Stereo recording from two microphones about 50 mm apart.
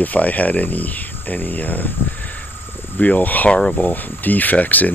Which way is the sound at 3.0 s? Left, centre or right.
Left.